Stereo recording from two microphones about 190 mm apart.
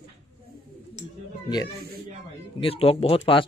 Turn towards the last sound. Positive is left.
turn(degrees=30)  # may be behind; listen again after turning